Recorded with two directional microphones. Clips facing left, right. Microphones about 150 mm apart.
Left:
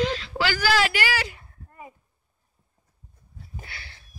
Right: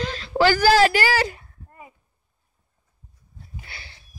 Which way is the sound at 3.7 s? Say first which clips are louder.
Even; 30° right (ahead or behind).